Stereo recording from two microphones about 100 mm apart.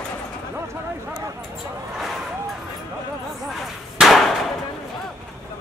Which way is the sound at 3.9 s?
Centre (ahead or behind).